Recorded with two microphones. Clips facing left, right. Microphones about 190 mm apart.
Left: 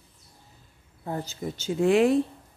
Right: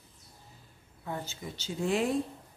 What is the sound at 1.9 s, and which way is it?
Speech, 75° left (ahead or behind).